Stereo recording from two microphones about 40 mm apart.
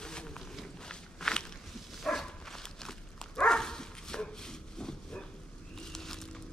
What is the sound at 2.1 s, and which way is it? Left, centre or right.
Dog, centre.